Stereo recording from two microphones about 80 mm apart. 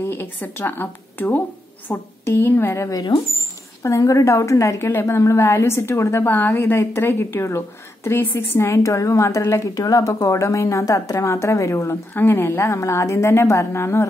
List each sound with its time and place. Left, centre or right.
0.0 s a woman's voice: left